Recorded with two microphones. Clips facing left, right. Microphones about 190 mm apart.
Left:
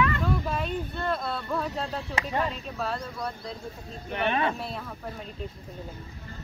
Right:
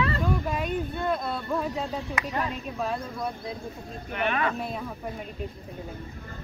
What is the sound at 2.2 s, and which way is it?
Speech, 30° left (ahead or behind).